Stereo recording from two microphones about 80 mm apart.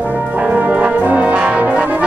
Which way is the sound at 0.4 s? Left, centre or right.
Centre.